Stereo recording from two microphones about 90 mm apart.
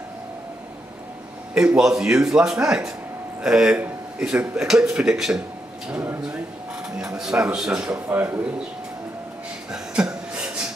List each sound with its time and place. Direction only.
1.5 s speech: 10° right (ahead or behind)
5.9 s speech: 15° right (ahead or behind)
7.2 s speech: 10° right (ahead or behind)
8.1 s speech: 20° right (ahead or behind)
9.7 s chuckle: 10° right (ahead or behind)